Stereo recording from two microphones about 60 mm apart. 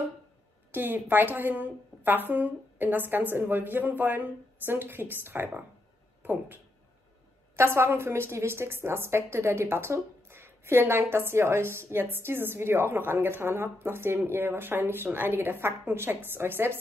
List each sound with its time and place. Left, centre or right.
0.7 s a woman's voice: right
7.5 s a woman's voice: right